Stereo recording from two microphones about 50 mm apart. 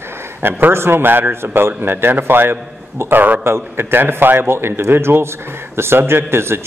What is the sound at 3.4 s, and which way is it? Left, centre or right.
A man's voice, right.